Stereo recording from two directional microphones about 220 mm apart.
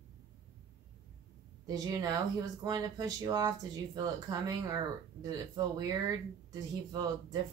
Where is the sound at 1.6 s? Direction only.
15° right (ahead or behind).